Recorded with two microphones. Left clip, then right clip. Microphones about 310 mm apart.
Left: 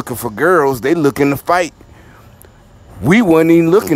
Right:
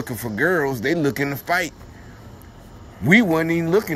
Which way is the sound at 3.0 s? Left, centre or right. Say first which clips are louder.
Left 7 dB; centre.